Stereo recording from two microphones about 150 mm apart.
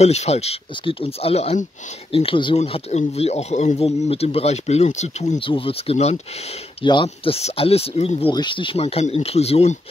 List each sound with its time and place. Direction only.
0.0 s speech: 45° left (ahead or behind)
6.8 s speech: 30° left (ahead or behind)
8.3 s speech: 30° left (ahead or behind)